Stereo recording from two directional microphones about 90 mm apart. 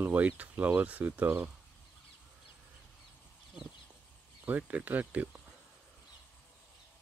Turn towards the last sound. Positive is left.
turn(degrees=-15)  # may be behind; listen again after turning